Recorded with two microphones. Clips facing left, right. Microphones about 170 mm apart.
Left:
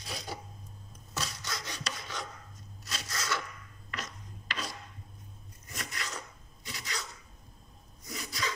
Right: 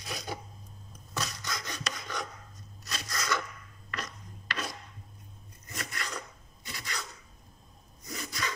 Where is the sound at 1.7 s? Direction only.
50° right (ahead or behind).